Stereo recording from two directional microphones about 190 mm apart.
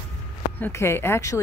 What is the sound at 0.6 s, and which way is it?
Speech, 15° left (ahead or behind).